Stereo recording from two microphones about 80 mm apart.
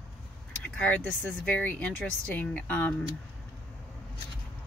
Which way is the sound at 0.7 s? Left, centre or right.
Centre.